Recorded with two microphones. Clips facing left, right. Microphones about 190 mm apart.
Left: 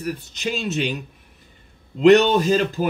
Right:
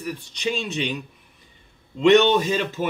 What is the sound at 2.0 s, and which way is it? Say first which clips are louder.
Speech: left 2 dB; centre (ahead or behind).